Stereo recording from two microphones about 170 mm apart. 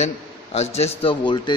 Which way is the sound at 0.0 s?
40° left (ahead or behind).